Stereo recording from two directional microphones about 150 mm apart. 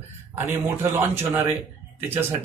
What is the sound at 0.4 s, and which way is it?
Speech, 15° right (ahead or behind).